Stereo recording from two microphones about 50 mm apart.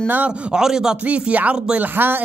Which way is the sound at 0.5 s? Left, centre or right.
Centre.